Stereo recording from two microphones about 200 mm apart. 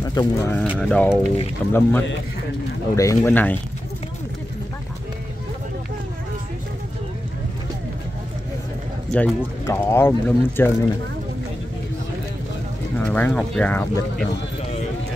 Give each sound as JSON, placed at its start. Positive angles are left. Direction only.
{"t": 0.0, "sound": "speech", "side_deg": 20}
{"t": 9.1, "sound": "speech", "side_deg": 10}
{"t": 13.0, "sound": "speech", "side_deg": 10}